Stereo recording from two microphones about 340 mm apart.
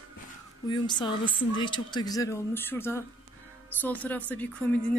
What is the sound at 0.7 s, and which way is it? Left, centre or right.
A woman's voice, centre.